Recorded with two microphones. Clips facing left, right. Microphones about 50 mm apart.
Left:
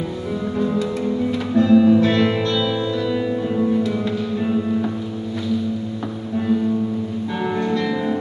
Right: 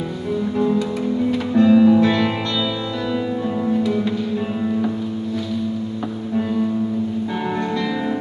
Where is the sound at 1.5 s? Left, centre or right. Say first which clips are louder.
Right 1 dB; centre.